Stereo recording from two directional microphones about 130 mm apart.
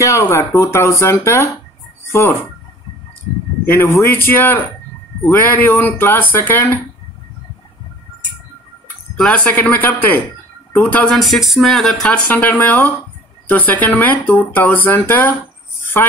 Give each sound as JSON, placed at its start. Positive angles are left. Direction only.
{"t": 0.0, "sound": "speech", "side_deg": 20}
{"t": 3.6, "sound": "speech", "side_deg": 20}
{"t": 9.1, "sound": "speech", "side_deg": 5}
{"t": 11.1, "sound": "speech", "side_deg": 0}